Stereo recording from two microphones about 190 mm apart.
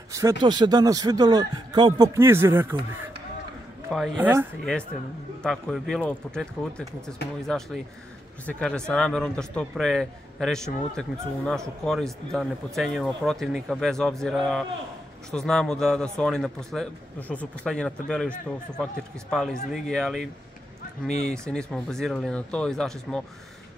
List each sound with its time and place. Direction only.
0.1 s speech: 15° right (ahead or behind)
3.9 s a man's voice: centre (ahead or behind)
5.4 s a man's voice: centre (ahead or behind)
19.3 s a man's voice: centre (ahead or behind)
21.3 s a man's voice: 5° left (ahead or behind)